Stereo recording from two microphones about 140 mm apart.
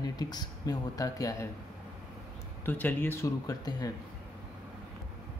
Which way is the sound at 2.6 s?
15° left (ahead or behind).